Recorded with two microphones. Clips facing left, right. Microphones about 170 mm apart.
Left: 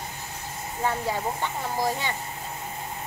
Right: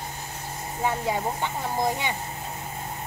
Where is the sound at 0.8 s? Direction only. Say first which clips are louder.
Right 1 dB; 15° right (ahead or behind).